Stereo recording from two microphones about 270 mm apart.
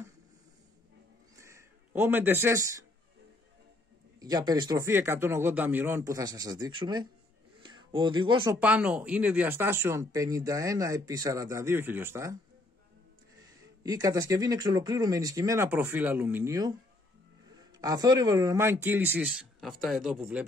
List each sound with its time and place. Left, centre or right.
1.4 s a sound: centre
4.2 s speech: centre
8.5 s speech: centre
13.8 s speech: centre